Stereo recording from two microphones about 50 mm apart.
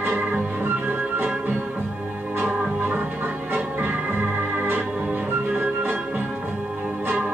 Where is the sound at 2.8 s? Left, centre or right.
Right.